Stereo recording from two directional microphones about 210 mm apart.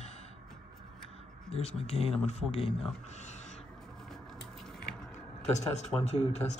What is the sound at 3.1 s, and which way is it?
Speech, 35° left (ahead or behind).